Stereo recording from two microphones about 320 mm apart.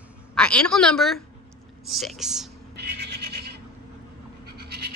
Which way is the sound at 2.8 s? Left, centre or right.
Right.